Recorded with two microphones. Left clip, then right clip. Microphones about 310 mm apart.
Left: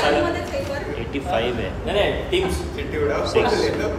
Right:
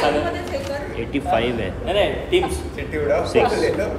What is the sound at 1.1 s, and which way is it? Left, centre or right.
A man's voice, centre.